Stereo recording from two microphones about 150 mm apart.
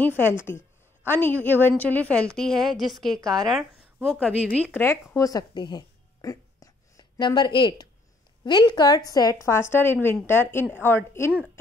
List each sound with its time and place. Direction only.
0.5 s a woman's voice: 15° left (ahead or behind)
5.1 s a sound: 25° left (ahead or behind)
8.5 s a woman's voice: 30° left (ahead or behind); by 11.6 s 10° left (ahead or behind)